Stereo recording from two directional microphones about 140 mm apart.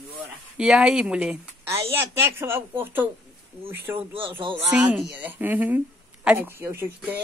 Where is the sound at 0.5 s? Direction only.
5° right (ahead or behind).